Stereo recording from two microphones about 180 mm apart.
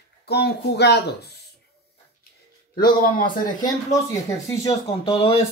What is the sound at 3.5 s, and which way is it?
Speech, 45° left (ahead or behind).